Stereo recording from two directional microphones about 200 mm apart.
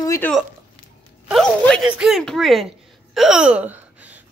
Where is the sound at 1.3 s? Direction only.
5° left (ahead or behind).